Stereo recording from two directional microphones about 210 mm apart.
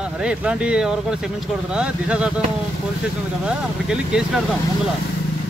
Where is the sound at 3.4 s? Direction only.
5° right (ahead or behind).